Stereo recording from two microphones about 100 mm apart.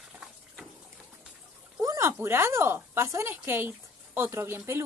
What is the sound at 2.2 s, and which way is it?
Speech, 25° right (ahead or behind).